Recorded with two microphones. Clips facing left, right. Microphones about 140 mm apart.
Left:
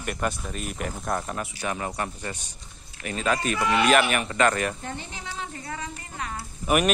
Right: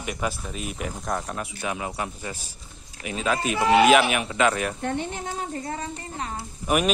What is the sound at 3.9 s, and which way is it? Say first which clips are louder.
Speech: right 2 dB; centre (ahead or behind).